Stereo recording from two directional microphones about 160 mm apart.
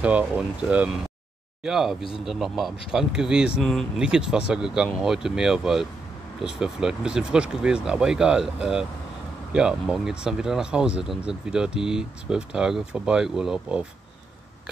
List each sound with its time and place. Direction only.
0.0 s speech: 10° right (ahead or behind)